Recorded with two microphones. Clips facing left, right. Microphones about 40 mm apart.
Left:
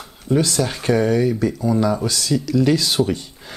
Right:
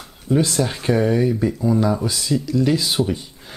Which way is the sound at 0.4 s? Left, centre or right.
Right.